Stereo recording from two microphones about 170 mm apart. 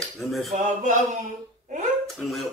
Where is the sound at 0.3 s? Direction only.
Centre (ahead or behind).